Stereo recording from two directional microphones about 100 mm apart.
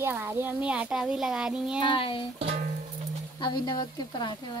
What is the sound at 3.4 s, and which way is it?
Speech, 45° left (ahead or behind).